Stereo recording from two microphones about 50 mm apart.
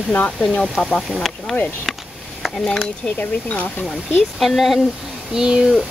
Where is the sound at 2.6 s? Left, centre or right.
Centre.